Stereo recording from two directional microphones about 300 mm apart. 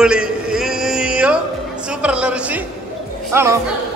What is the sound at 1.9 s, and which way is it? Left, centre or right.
A man's voice, centre.